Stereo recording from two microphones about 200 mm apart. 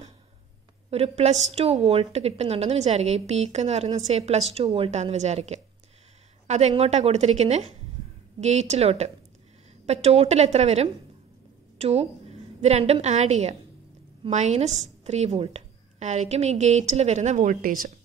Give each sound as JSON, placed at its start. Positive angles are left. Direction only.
{"t": 0.8, "sound": "a woman's voice", "side_deg": -30}